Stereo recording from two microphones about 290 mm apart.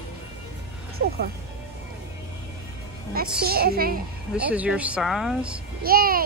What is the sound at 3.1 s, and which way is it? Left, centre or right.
Speech, right.